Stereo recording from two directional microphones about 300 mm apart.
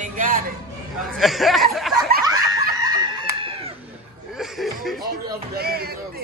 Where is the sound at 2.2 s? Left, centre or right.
Centre.